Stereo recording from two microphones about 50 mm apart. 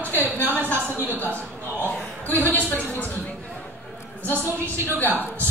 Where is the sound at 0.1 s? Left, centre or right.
Right.